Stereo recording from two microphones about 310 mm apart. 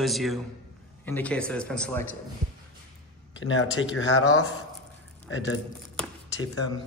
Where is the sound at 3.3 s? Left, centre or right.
Left.